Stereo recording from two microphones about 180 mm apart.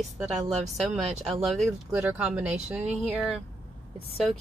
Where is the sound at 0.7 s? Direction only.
Centre (ahead or behind).